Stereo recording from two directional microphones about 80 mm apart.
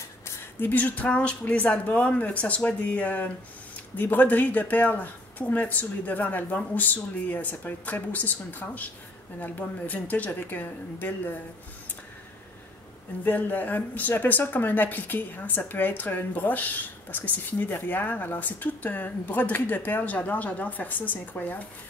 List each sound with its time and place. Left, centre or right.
0.6 s speech: left
13.2 s speech: left